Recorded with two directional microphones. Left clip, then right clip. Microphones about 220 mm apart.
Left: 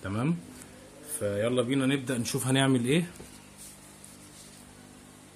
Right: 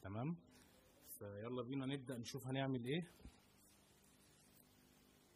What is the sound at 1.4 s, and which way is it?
Speech, 45° right (ahead or behind).